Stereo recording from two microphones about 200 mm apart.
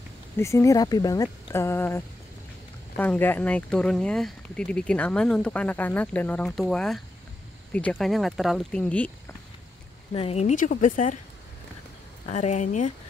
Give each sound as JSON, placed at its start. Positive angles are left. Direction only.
{"t": 0.4, "sound": "speech", "side_deg": 15}
{"t": 10.1, "sound": "speech", "side_deg": 30}
{"t": 12.3, "sound": "speech", "side_deg": 35}